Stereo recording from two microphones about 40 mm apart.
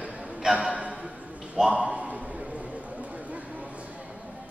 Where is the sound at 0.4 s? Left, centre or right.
Centre.